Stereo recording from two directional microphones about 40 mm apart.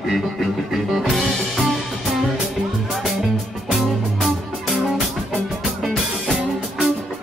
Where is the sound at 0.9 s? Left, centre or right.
Centre.